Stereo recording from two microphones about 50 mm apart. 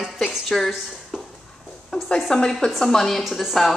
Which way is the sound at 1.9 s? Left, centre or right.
Centre.